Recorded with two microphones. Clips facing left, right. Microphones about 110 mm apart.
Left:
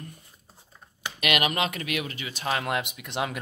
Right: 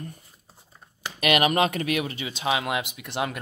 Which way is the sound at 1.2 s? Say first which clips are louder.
Right 5 dB; 35° right (ahead or behind).